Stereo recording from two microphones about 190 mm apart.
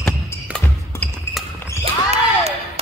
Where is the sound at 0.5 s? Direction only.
10° left (ahead or behind).